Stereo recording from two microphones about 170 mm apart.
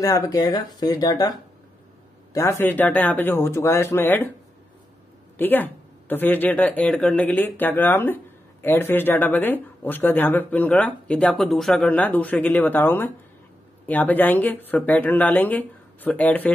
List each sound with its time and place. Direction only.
0.0 s speech: 20° left (ahead or behind)
2.3 s speech: 15° left (ahead or behind)
5.4 s speech: 10° left (ahead or behind)